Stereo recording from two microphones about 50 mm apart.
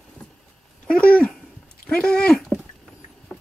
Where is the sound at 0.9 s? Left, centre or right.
Left.